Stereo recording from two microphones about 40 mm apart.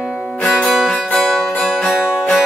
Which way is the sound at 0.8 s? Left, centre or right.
Centre.